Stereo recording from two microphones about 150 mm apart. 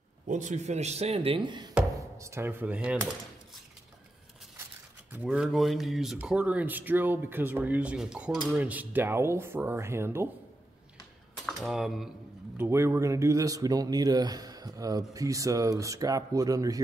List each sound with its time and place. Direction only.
0.3 s speech: 55° right (ahead or behind); by 1.7 s 30° right (ahead or behind)
2.1 s speech: 20° right (ahead or behind)
5.1 s speech: 10° right (ahead or behind)
11.4 s cutlery: centre (ahead or behind)
12.5 s speech: 15° right (ahead or behind)